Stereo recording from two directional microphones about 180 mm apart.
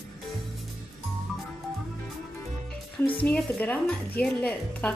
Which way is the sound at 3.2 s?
5° left (ahead or behind).